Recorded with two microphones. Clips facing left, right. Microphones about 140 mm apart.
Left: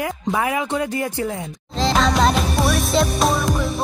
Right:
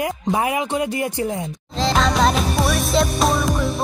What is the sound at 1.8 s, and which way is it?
Music, centre (ahead or behind).